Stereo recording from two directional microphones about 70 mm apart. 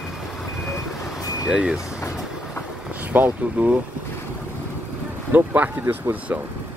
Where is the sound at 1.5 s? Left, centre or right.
Centre.